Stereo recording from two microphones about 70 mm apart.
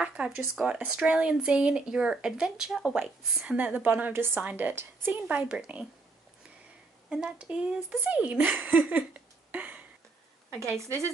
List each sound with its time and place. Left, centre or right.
0.0 s speech: centre
3.5 s a woman's voice: right
7.1 s a woman's voice: centre
9.5 s a sound: right